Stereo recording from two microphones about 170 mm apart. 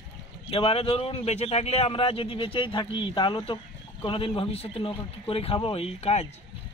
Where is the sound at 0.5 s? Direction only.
30° left (ahead or behind).